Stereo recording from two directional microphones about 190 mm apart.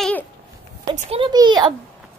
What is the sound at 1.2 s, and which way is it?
Speech, 20° right (ahead or behind).